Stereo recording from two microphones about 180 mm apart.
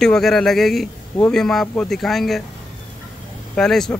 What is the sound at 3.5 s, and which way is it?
Speech, 5° left (ahead or behind).